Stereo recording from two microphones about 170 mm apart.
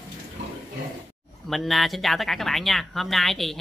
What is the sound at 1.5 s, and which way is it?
Speech, centre (ahead or behind).